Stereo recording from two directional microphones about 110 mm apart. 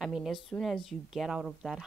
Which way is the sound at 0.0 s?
5° right (ahead or behind).